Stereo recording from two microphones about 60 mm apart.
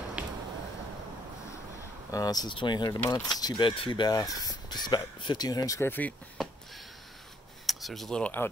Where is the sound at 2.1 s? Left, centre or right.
Left.